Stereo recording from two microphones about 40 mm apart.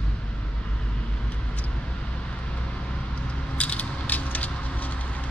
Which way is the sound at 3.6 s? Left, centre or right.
Left.